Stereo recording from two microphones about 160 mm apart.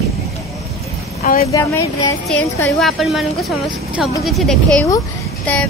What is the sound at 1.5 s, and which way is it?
Speech, 15° left (ahead or behind).